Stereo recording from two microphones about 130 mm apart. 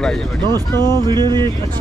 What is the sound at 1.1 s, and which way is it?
Speech, 35° right (ahead or behind).